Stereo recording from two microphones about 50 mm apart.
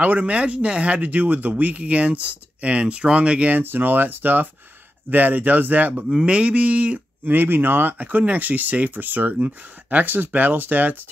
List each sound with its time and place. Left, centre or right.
0.0 s speech: right
3.6 s speech: right
6.0 s speech: centre
7.2 s speech: right